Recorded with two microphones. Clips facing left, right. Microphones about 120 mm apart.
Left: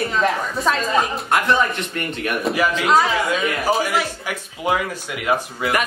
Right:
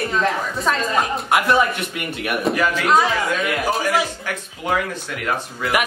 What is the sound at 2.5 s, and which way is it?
A woman's voice, 10° left (ahead or behind).